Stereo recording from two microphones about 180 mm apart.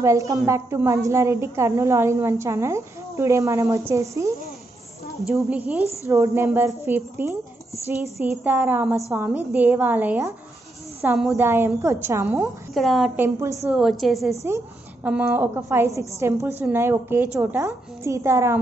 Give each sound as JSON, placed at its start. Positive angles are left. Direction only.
{"t": 0.0, "sound": "a woman's voice", "side_deg": -15}
{"t": 5.2, "sound": "a woman's voice", "side_deg": 0}
{"t": 6.0, "sound": "a woman's voice", "side_deg": -15}
{"t": 12.7, "sound": "a woman's voice", "side_deg": 0}
{"t": 13.2, "sound": "a woman's voice", "side_deg": -15}
{"t": 13.7, "sound": "a woman's voice", "side_deg": 0}
{"t": 14.3, "sound": "a woman's voice", "side_deg": -15}